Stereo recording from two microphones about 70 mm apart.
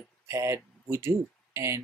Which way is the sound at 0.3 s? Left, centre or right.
Right.